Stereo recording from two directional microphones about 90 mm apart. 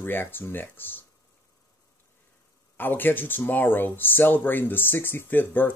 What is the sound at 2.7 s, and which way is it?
Speech, 20° left (ahead or behind).